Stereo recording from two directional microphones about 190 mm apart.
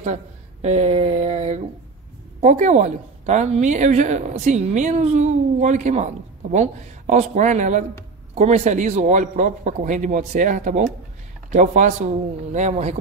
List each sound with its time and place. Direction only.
0.0 s a woman's voice: 35° right (ahead or behind)